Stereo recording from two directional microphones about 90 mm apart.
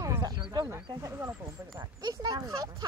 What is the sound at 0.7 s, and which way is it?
Speech, 25° right (ahead or behind).